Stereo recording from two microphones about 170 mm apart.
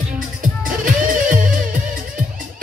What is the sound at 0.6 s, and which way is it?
Music, 50° right (ahead or behind).